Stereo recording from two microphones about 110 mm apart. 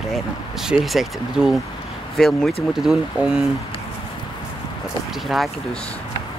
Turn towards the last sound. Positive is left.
turn(degrees=0)  # may be behind; listen again after turning